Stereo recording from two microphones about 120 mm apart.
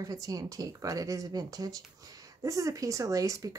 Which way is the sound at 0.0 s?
30° right (ahead or behind).